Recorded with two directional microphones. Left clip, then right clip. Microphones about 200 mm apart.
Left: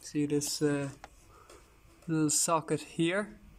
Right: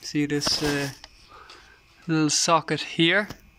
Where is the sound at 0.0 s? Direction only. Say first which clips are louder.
Right 6 dB; 5° right (ahead or behind).